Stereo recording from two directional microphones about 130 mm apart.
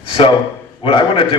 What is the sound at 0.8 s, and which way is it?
Speech, 45° left (ahead or behind).